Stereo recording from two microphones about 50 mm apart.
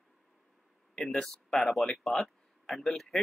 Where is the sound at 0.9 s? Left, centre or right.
Centre.